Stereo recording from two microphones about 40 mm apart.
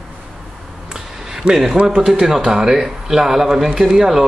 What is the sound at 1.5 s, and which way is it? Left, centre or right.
Speech, centre.